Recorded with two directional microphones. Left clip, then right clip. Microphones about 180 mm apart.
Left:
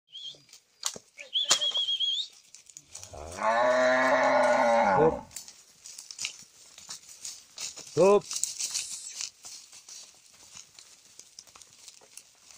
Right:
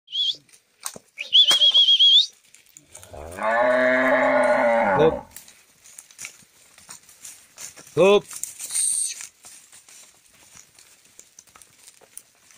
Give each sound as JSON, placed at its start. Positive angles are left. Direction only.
{"t": 0.1, "sound": "a sound", "side_deg": -20}
{"t": 0.7, "sound": "bird flight", "side_deg": 5}
{"t": 1.1, "sound": "neigh", "side_deg": -15}
{"t": 1.8, "sound": "a sound", "side_deg": -20}
{"t": 3.2, "sound": "livestock", "side_deg": -45}
{"t": 7.6, "sound": "rattle", "side_deg": -10}
{"t": 8.4, "sound": "tearing", "side_deg": -35}